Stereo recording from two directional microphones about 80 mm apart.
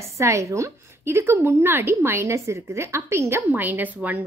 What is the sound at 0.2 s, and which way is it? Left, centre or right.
A woman's voice, right.